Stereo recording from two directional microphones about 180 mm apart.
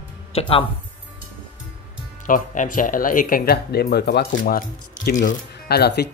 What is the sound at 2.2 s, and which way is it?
Speech, 45° left (ahead or behind).